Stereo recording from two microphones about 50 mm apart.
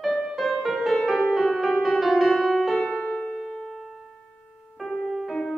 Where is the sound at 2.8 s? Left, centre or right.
Left.